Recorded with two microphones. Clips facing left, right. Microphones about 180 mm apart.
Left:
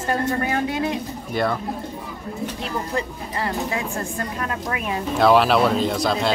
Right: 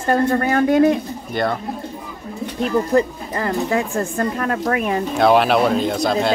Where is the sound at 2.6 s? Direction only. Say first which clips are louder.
Right 13 dB; 50° right (ahead or behind).